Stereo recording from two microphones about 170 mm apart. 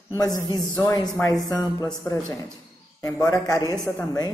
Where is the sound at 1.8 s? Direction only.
25° left (ahead or behind).